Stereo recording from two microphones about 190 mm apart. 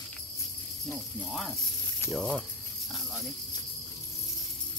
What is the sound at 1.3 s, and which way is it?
Speech, centre (ahead or behind).